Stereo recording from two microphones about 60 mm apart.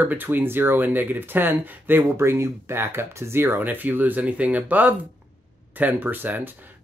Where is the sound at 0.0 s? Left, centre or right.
Right.